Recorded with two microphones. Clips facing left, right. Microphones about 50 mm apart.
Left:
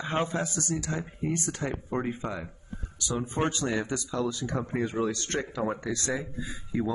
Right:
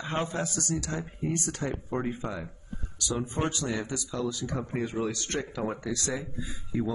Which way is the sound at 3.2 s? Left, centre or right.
Left.